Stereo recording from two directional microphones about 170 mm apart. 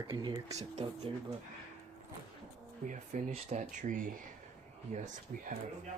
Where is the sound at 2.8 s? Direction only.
45° right (ahead or behind).